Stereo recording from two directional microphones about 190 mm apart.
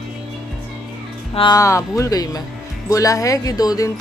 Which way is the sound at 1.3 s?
25° left (ahead or behind).